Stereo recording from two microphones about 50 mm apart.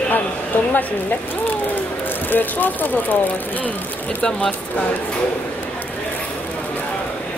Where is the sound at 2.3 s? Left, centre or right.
Left.